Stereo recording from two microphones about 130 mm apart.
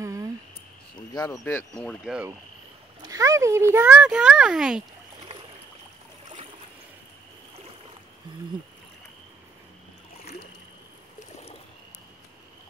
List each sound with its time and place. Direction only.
0.0 s cricket: 25° right (ahead or behind)
1.1 s speech: 30° left (ahead or behind)
1.4 s speech: 10° left (ahead or behind)
3.0 s speech: 25° right (ahead or behind)
3.8 s a child's voice: 10° right (ahead or behind)